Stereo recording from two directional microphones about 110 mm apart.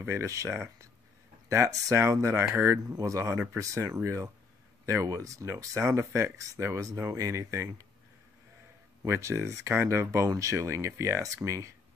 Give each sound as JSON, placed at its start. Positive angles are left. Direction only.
{"t": 0.0, "sound": "speech", "side_deg": -25}
{"t": 9.0, "sound": "speech", "side_deg": -25}